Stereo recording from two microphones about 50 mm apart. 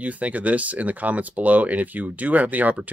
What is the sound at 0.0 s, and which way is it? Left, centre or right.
Speech, right.